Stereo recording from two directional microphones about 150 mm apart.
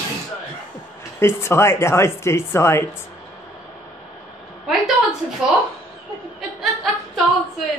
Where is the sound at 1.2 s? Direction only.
15° left (ahead or behind).